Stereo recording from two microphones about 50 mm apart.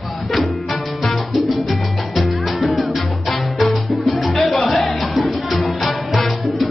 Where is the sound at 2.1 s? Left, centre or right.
Centre.